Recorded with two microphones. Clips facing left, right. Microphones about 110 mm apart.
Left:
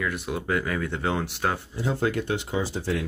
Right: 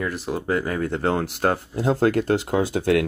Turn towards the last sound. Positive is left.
turn(degrees=-60)  # may be behind; listen again after turning